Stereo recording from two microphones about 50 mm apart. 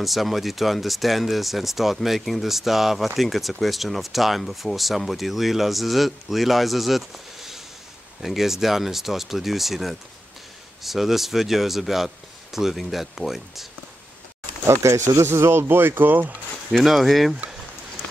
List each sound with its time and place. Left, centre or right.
0.0 s speech: centre
14.7 s speech: right
16.7 s speech: centre